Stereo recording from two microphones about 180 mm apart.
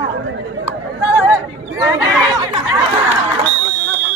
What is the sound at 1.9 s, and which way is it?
Chatter, 20° right (ahead or behind).